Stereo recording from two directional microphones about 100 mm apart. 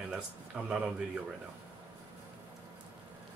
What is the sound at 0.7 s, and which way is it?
Speech, 5° right (ahead or behind).